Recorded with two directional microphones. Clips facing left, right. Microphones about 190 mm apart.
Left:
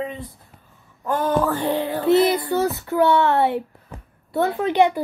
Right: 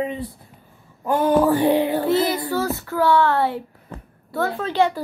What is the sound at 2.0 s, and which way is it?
A child's voice, 20° left (ahead or behind).